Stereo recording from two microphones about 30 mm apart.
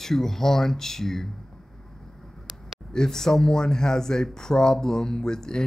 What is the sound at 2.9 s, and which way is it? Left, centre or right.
Speech, centre.